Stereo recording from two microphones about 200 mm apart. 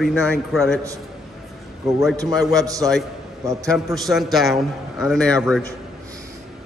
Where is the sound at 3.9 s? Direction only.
Centre (ahead or behind).